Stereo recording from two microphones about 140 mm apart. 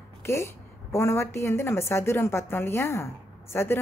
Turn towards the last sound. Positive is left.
turn(degrees=15)  # may be behind; listen again after turning